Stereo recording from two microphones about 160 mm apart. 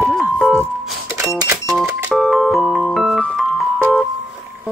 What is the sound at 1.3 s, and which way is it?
Cash register, 20° right (ahead or behind).